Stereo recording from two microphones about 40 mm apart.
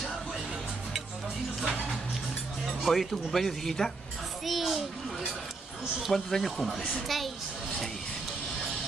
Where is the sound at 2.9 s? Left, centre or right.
Centre.